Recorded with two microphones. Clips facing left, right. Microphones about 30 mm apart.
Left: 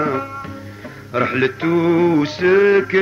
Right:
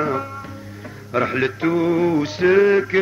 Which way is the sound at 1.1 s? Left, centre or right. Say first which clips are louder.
Left 2 dB; centre.